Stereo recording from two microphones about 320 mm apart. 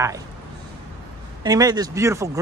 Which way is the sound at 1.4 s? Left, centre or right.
Centre.